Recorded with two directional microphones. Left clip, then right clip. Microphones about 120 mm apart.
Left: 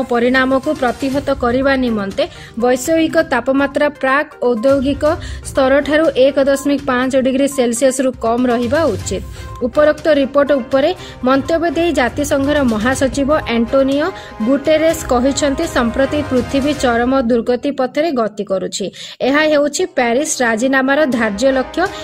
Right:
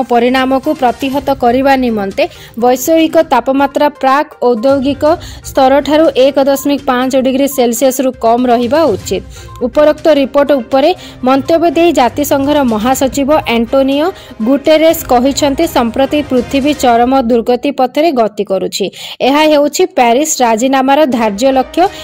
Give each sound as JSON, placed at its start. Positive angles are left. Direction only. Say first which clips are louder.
{"t": 0.1, "sound": "speech", "louder": "right 3 dB", "side_deg": -40}